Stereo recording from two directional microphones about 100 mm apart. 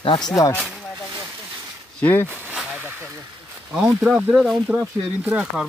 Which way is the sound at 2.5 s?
10° right (ahead or behind).